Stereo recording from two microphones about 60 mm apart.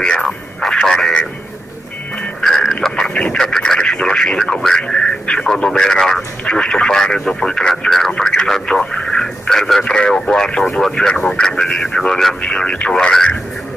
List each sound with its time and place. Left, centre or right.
0.0 s music: centre
2.4 s music: centre
2.8 s radio: centre
4.8 s speech: centre
12.4 s speech: centre